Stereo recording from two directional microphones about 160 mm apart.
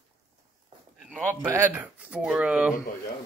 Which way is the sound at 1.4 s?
15° right (ahead or behind).